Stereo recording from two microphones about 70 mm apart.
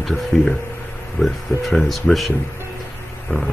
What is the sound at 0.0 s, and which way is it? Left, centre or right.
Speech, centre.